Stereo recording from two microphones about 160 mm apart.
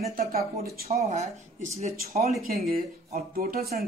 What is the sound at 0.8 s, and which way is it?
Speech, 40° right (ahead or behind).